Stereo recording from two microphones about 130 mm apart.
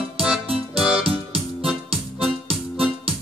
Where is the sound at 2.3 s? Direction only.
45° right (ahead or behind).